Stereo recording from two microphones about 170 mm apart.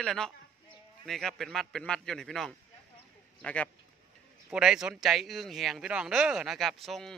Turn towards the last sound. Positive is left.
turn(degrees=0)  # may be behind; listen again after turning